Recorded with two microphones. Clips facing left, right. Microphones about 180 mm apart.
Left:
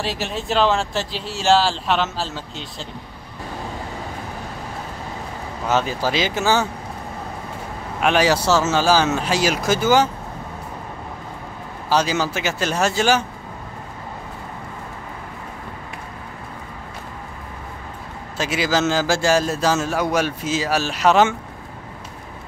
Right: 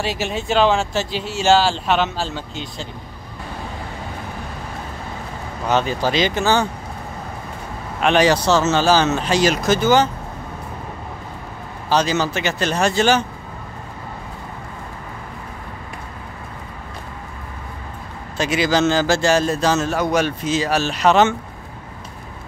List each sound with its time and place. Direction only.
0.0 s speech: centre (ahead or behind)
5.7 s speech: 5° left (ahead or behind)
8.0 s speech: 5° left (ahead or behind)
11.9 s speech: 10° left (ahead or behind)
18.4 s speech: 5° left (ahead or behind)